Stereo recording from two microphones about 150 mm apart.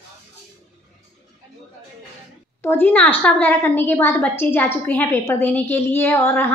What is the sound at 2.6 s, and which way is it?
A woman's voice, 15° left (ahead or behind).